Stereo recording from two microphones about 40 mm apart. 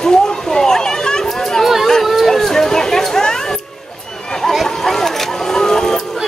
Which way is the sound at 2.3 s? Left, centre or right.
Centre.